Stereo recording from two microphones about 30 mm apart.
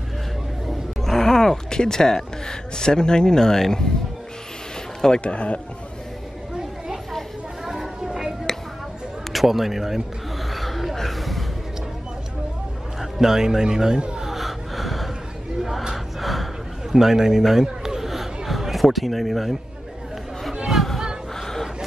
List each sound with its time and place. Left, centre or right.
1.0 s speech: centre
5.2 s speech: left
8.5 s a sound: centre
9.3 s speech: centre
10.5 s a sound: centre
13.0 s speech: centre
14.2 s gasp: centre
16.9 s speech: centre
17.8 s a sound: centre
20.7 s chatter: centre